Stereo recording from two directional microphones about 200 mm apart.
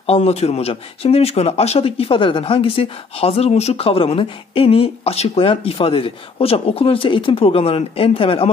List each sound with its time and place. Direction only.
0.0 s speech: 30° left (ahead or behind)